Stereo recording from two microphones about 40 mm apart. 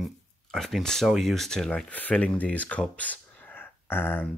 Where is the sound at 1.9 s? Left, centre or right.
Left.